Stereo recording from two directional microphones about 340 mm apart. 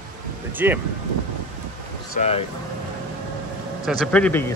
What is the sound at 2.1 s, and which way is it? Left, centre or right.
Speech, centre.